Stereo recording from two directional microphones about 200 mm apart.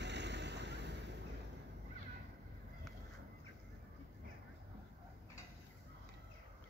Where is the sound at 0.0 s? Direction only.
60° right (ahead or behind).